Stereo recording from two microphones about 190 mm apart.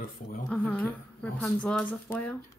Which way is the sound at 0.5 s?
5° left (ahead or behind).